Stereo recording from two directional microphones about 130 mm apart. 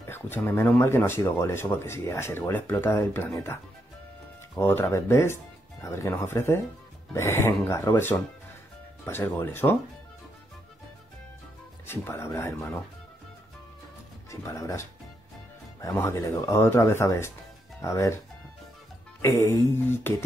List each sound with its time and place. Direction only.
0.0 s speech: 15° left (ahead or behind)
4.6 s speech: 20° left (ahead or behind)
11.9 s speech: 20° left (ahead or behind)
14.3 s speech: 25° left (ahead or behind)
19.2 s speech: 20° left (ahead or behind)